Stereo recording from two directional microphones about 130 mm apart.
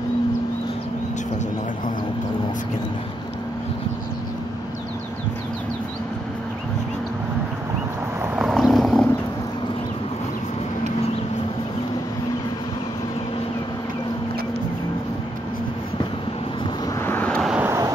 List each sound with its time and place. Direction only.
8.4 s a sound: centre (ahead or behind)
17.0 s vehicle: 15° left (ahead or behind)
17.6 s vehicle: 25° right (ahead or behind)